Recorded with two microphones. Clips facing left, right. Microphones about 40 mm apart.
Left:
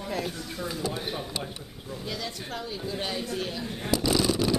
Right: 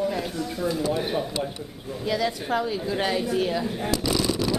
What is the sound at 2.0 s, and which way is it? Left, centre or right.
Speech, centre.